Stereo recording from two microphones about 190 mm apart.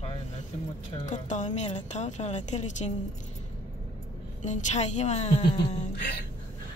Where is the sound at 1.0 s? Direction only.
40° left (ahead or behind).